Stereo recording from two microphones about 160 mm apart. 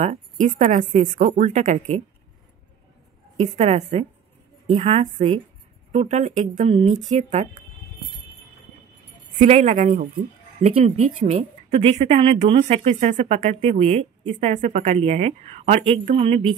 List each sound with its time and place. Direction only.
0.0 s a woman's voice: 45° right (ahead or behind)
3.3 s speech: 40° right (ahead or behind)
5.0 s a woman's voice: 45° right (ahead or behind)
9.4 s a woman's voice: 50° right (ahead or behind)
10.6 s speech: 40° right (ahead or behind)
14.3 s speech: 50° right (ahead or behind)